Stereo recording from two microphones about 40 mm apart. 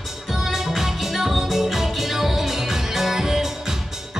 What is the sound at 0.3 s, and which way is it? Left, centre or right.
Music, centre.